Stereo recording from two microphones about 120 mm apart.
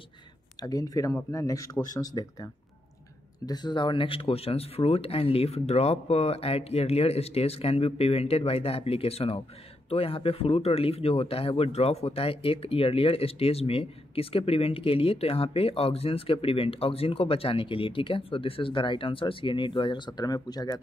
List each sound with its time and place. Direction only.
0.6 s speech: 30° left (ahead or behind)